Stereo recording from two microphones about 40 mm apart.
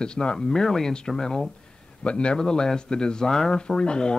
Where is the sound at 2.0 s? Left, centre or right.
Left.